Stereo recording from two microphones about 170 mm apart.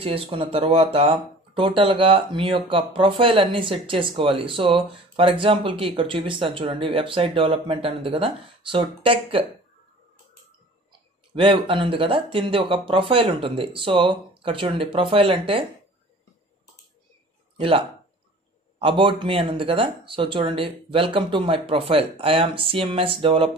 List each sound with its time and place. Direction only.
0.0 s speech: 35° right (ahead or behind)
10.9 s speech: 30° right (ahead or behind)
17.6 s speech: 30° right (ahead or behind)